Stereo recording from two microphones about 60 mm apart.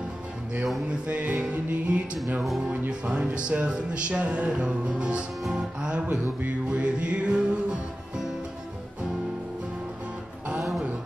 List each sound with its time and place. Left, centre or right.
0.8 s music: right
6.0 s music: right